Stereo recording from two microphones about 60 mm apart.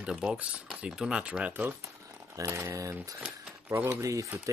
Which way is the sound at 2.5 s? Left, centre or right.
Right.